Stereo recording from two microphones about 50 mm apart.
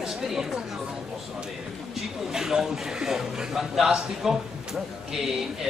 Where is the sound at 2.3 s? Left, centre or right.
Centre.